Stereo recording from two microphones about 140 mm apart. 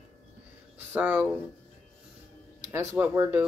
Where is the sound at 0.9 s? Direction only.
15° right (ahead or behind).